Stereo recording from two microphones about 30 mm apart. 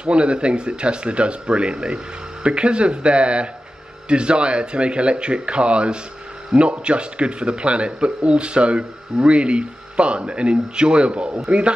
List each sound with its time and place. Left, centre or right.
0.0 s a man's voice: right